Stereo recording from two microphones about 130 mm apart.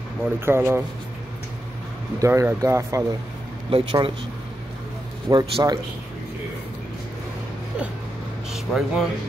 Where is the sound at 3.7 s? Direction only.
40° right (ahead or behind).